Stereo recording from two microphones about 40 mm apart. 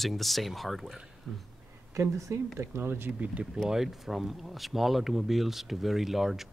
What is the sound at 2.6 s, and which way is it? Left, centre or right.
Speech, right.